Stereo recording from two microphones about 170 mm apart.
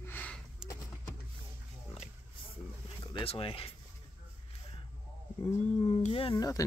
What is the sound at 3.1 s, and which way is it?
Speech, 30° left (ahead or behind).